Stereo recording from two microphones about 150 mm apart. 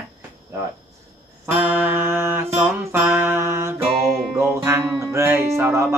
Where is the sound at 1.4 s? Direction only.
15° right (ahead or behind).